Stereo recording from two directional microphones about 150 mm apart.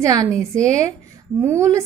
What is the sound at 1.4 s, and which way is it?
Speech, 20° right (ahead or behind).